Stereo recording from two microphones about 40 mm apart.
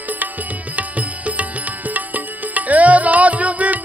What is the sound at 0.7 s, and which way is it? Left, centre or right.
Music, right.